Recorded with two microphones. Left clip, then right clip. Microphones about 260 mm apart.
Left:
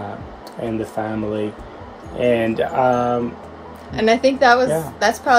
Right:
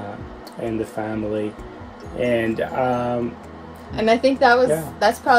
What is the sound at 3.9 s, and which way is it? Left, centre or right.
A woman's voice, centre.